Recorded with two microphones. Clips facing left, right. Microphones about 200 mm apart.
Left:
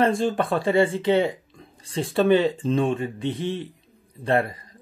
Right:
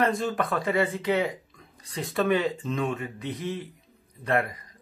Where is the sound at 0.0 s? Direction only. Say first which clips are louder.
Left 4 dB; 30° left (ahead or behind).